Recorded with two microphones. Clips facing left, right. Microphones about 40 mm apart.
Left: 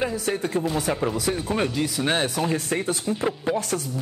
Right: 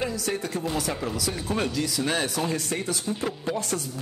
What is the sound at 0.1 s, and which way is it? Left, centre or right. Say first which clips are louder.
Speech: left 4 dB; left.